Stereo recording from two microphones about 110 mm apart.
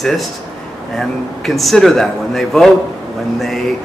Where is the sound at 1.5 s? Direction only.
Centre (ahead or behind).